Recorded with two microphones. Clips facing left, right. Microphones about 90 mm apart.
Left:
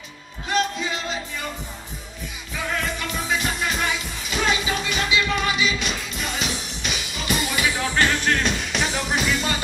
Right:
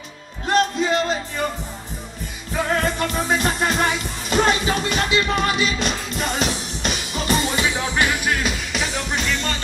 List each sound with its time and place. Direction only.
0.5 s music: 45° right (ahead or behind)
2.5 s music: 45° right (ahead or behind); by 9.6 s 5° left (ahead or behind)